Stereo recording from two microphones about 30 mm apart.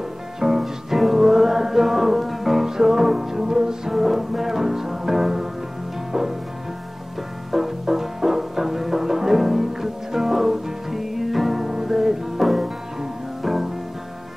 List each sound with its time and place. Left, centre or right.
0.4 s music: centre
3.9 s music: centre
7.5 s music: centre